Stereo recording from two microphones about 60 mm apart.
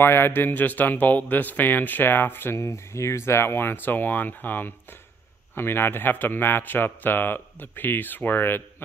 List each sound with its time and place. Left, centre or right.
0.0 s speech: left
2.5 s speech: left